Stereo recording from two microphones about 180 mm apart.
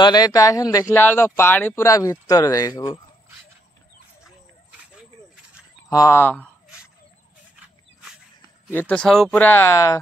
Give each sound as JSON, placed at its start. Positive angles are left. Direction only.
{"t": 0.0, "sound": "speech", "side_deg": 20}
{"t": 5.9, "sound": "speech", "side_deg": 15}
{"t": 7.5, "sound": "dog", "side_deg": -5}
{"t": 8.7, "sound": "speech", "side_deg": 10}